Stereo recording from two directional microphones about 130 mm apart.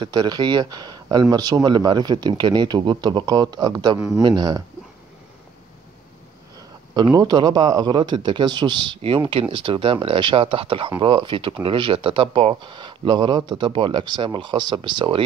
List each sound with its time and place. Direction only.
0.0 s speech: 35° right (ahead or behind)
6.9 s speech: 35° right (ahead or behind)